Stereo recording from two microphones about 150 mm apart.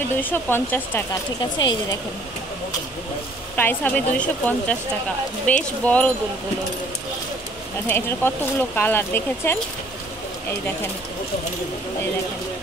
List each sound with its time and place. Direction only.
0.2 s speech: 10° left (ahead or behind)
1.4 s speech: 30° left (ahead or behind)
3.5 s speech: 10° left (ahead or behind)
7.9 s speech: 15° left (ahead or behind)